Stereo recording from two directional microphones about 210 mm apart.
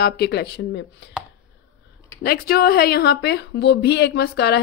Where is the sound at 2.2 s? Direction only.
45° left (ahead or behind).